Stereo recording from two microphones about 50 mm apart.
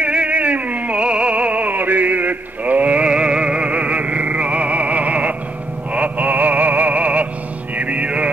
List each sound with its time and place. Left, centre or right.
0.0 s music: right